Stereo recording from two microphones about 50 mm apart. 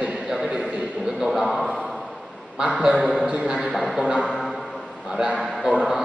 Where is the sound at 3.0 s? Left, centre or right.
Centre.